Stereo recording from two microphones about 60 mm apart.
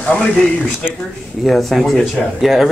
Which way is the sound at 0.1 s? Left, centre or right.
Centre.